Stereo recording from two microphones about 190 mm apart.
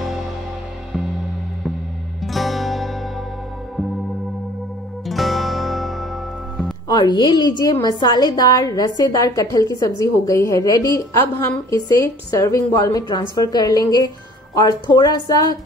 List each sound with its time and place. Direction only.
2.2 s music: centre (ahead or behind)
5.0 s music: centre (ahead or behind)
6.9 s a woman's voice: 25° left (ahead or behind)